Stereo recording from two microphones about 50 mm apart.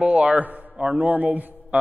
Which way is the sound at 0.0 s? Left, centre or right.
Right.